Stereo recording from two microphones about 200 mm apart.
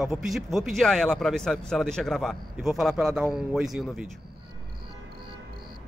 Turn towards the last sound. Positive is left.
turn(degrees=0)  # may be behind; listen again after turning